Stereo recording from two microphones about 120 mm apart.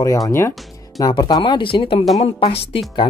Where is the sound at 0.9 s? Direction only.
35° left (ahead or behind).